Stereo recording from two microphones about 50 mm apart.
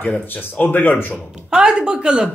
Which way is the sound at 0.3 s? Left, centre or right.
Left.